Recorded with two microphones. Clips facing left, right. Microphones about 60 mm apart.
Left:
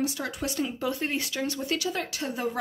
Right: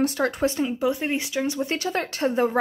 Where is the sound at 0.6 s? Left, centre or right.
Centre.